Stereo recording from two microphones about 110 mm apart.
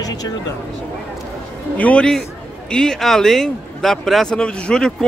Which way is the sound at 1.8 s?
10° left (ahead or behind).